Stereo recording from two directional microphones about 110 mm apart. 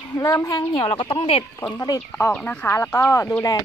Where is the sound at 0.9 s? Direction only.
60° left (ahead or behind).